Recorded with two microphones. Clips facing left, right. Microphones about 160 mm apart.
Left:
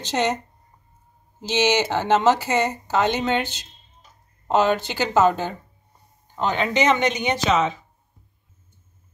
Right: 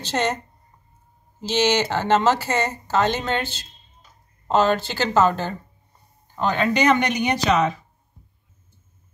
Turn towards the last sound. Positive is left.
turn(degrees=25)  # may be behind; listen again after turning